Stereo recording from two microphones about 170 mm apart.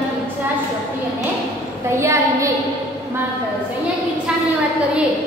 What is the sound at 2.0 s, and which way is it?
Speech, 15° right (ahead or behind).